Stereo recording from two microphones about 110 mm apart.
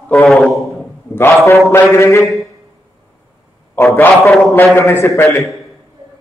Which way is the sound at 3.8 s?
20° left (ahead or behind).